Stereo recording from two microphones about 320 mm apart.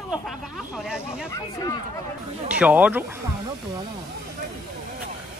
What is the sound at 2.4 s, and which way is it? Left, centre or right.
Speech, centre.